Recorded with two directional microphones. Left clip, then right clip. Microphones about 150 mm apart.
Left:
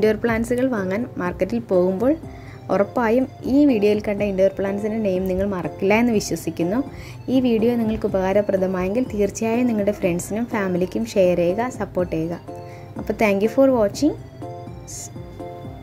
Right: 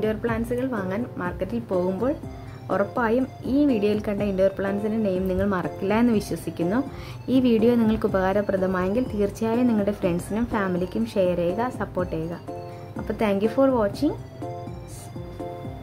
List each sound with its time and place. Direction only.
0.0 s a woman's voice: 35° left (ahead or behind); by 5.7 s 5° left (ahead or behind)
5.8 s a woman's voice: 15° left (ahead or behind); by 13.0 s centre (ahead or behind)
13.0 s a woman's voice: 20° left (ahead or behind)